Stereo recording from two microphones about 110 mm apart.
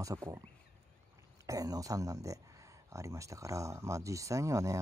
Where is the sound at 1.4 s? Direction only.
30° right (ahead or behind).